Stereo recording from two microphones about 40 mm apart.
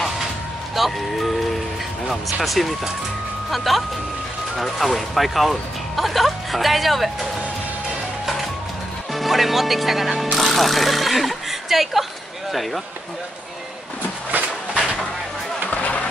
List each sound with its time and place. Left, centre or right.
0.7 s speech: centre
2.4 s speech: centre
9.1 s speech: centre
15.7 s music: left